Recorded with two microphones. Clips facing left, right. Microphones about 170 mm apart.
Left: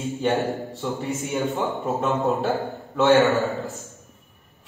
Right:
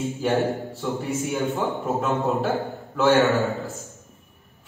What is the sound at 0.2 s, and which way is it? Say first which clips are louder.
A man's voice: even; centre (ahead or behind).